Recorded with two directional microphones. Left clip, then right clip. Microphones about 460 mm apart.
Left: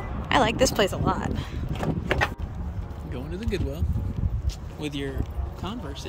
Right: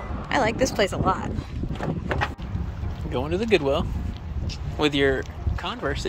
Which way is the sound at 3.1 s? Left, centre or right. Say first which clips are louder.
Right 11 dB; centre.